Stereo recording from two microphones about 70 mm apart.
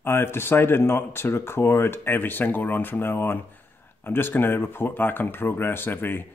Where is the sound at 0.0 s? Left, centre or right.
Left.